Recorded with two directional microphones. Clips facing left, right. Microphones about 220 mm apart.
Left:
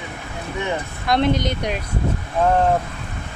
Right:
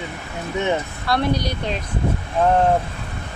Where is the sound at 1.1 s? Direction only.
20° left (ahead or behind).